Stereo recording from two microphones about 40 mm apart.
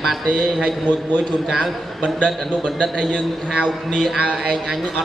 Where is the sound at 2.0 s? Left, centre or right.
Left.